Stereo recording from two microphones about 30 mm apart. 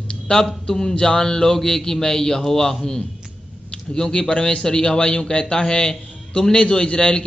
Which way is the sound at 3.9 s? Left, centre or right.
Left.